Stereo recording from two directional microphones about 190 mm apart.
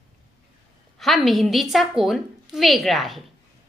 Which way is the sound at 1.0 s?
Centre (ahead or behind).